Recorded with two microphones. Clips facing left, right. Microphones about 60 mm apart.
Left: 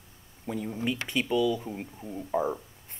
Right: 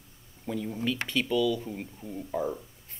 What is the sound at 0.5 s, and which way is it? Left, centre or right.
Speech, centre.